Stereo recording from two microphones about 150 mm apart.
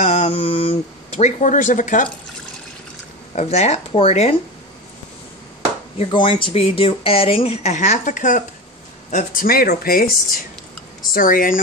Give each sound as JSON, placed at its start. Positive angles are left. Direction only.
{"t": 0.0, "sound": "speech", "side_deg": 50}
{"t": 3.3, "sound": "speech", "side_deg": 50}
{"t": 5.9, "sound": "speech", "side_deg": 35}
{"t": 11.1, "sound": "speech", "side_deg": 70}